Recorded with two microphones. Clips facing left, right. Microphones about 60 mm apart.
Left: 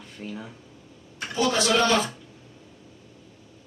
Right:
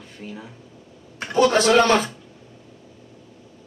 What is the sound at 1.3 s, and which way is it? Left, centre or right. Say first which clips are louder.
Speech: right 7 dB; right.